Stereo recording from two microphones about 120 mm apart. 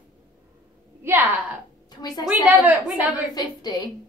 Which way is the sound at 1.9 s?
35° left (ahead or behind).